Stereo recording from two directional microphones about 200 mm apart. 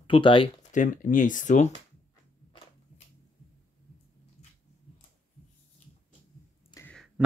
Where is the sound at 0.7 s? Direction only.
40° left (ahead or behind).